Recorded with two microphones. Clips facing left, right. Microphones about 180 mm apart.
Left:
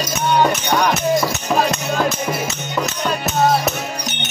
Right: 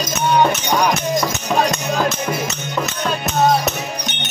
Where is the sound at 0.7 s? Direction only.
10° right (ahead or behind).